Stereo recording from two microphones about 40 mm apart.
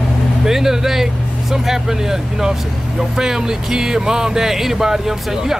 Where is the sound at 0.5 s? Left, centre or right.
Centre.